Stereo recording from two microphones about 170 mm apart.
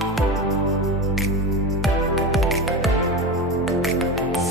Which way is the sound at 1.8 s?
Centre (ahead or behind).